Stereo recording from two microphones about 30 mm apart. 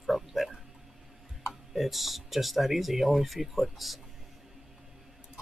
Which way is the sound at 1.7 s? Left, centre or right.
Centre.